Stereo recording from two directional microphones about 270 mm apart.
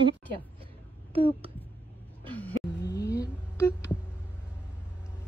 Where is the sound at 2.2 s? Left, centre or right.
Centre.